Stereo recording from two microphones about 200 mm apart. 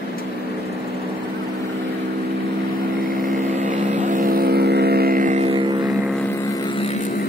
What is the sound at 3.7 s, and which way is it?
Vehicle, 40° right (ahead or behind).